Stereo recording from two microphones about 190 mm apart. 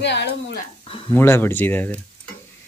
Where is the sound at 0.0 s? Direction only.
65° left (ahead or behind).